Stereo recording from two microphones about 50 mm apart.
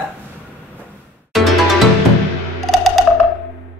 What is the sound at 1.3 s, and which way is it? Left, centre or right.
Music, centre.